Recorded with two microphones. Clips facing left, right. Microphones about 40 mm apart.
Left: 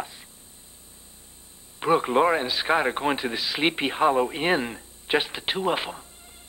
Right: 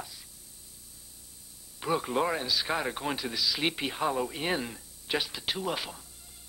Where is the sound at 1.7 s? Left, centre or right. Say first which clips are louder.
Left 8 dB; left.